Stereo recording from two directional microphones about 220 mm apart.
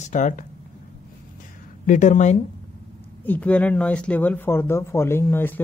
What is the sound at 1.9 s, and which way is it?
Speech, 35° left (ahead or behind).